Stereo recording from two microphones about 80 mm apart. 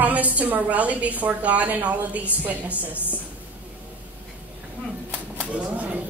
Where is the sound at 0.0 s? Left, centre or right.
Centre.